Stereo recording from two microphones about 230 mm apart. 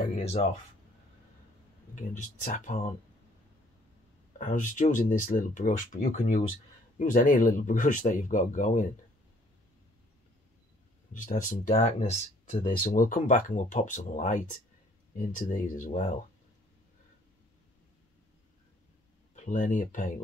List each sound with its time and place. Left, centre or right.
0.0 s a sound: left
2.0 s speech: left
4.4 s speech: left
11.1 s speech: left
19.3 s speech: left